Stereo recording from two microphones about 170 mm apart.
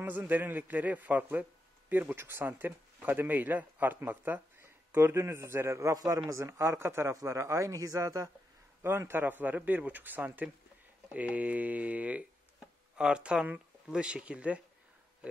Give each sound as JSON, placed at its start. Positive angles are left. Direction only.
{"t": 0.0, "sound": "a man's voice", "side_deg": -10}